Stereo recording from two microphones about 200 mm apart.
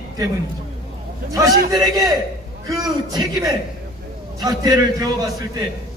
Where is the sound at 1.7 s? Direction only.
20° right (ahead or behind).